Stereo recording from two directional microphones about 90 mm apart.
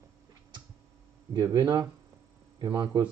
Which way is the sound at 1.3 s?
40° right (ahead or behind).